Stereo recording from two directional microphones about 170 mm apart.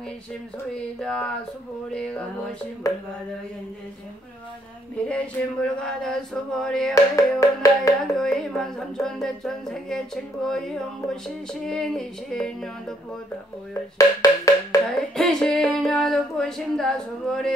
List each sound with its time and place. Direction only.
1.0 s speech: 5° left (ahead or behind)
2.8 s music: 20° left (ahead or behind)
4.9 s speech: 5° left (ahead or behind)
7.2 s music: 20° left (ahead or behind)
8.2 s speech: centre (ahead or behind)
13.9 s wood block: 20° left (ahead or behind)
14.9 s speech: centre (ahead or behind)